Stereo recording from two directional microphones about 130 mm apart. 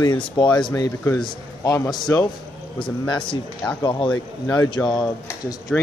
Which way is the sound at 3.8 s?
35° left (ahead or behind).